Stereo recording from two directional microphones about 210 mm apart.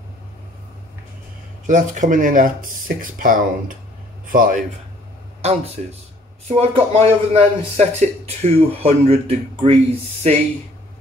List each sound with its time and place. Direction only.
1.7 s speech: 35° right (ahead or behind)
5.4 s speech: 30° right (ahead or behind)